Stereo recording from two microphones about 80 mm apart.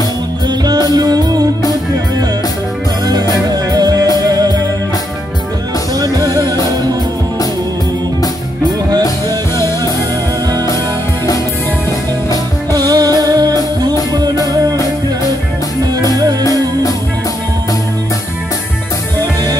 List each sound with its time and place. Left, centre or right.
0.9 s music: right
3.4 s music: right
6.1 s music: right
12.7 s music: right